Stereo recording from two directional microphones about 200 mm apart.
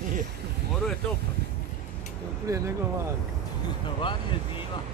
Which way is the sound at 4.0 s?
25° left (ahead or behind).